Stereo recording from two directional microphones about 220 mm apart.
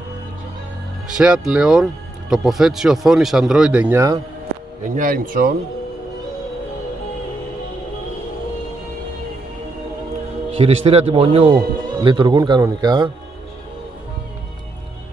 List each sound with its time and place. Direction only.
1.0 s speech: 5° right (ahead or behind)
4.8 s speech: 40° right (ahead or behind)
10.5 s a man's voice: 25° right (ahead or behind)